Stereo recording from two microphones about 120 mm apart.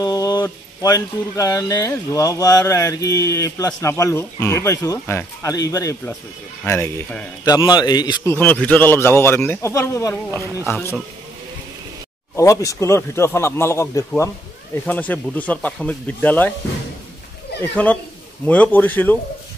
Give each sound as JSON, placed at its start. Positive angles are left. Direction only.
{"t": 0.0, "sound": "speech", "side_deg": 35}
{"t": 7.4, "sound": "a man's voice", "side_deg": 35}
{"t": 8.3, "sound": "speech", "side_deg": 15}
{"t": 10.4, "sound": "speech", "side_deg": -20}
{"t": 10.7, "sound": "speech", "side_deg": 20}
{"t": 12.4, "sound": "speech", "side_deg": 25}
{"t": 18.4, "sound": "speech", "side_deg": 10}